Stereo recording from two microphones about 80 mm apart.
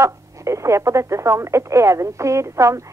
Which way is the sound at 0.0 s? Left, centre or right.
Right.